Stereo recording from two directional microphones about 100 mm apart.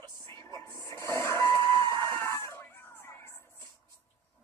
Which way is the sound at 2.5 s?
25° left (ahead or behind).